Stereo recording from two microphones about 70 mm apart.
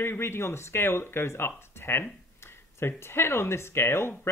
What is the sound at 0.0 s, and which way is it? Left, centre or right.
Speech, left.